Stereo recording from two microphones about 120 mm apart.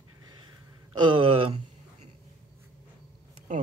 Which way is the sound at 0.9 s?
40° right (ahead or behind).